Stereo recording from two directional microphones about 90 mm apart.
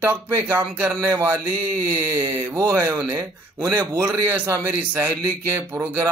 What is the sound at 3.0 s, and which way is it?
Speech, 50° right (ahead or behind).